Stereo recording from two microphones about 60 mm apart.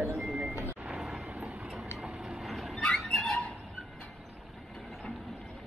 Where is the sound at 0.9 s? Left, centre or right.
Centre.